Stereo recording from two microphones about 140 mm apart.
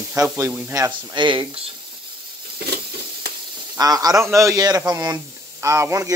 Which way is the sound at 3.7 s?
25° right (ahead or behind).